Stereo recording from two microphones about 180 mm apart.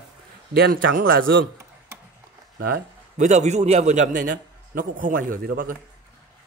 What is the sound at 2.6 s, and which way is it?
Speech, 55° right (ahead or behind).